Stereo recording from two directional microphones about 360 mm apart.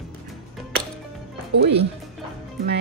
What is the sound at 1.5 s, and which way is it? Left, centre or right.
Speech, right.